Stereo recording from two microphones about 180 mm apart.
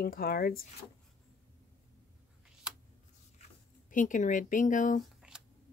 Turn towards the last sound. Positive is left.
turn(degrees=45)  # may be behind; listen again after turning